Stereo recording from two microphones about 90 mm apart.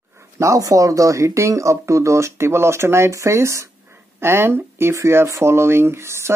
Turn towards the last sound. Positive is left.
turn(degrees=-30)  # may be behind; listen again after turning